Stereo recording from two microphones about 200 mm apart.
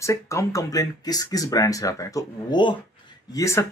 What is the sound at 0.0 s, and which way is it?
Speech, 15° left (ahead or behind).